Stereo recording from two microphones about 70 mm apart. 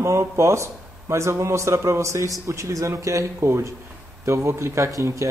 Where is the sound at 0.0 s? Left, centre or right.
Right.